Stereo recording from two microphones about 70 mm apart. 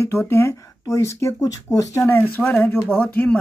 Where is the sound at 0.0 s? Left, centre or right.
Left.